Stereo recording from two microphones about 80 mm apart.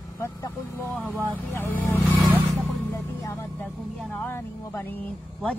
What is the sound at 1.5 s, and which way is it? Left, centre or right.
Speech, left.